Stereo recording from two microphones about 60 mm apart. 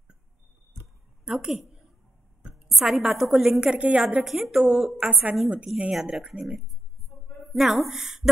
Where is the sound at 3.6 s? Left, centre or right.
Centre.